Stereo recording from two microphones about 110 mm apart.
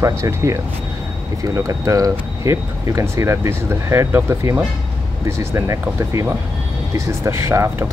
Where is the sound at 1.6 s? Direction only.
30° right (ahead or behind).